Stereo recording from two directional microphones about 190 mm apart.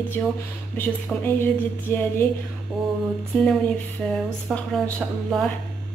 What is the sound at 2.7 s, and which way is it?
Music, centre (ahead or behind).